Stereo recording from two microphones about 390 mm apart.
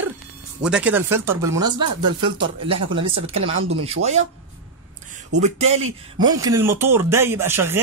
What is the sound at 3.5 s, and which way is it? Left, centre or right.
Speech, right.